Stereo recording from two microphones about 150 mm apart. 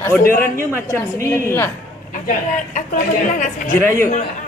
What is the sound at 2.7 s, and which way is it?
Speech, 60° left (ahead or behind).